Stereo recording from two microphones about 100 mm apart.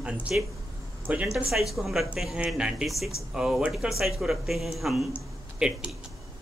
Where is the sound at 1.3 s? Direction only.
Centre (ahead or behind).